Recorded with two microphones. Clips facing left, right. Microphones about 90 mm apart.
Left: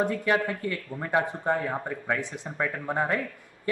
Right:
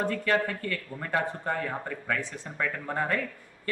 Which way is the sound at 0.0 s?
15° left (ahead or behind).